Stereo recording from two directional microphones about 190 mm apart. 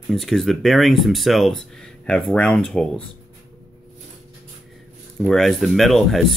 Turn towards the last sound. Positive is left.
turn(degrees=0)  # may be behind; listen again after turning